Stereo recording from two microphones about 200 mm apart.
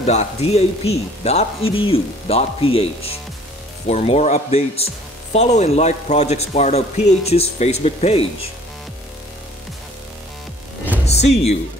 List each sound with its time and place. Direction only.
0.0 s speech: 35° left (ahead or behind)
11.1 s speech: 30° left (ahead or behind)